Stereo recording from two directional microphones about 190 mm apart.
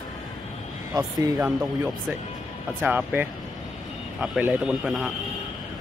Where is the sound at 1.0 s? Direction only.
20° right (ahead or behind).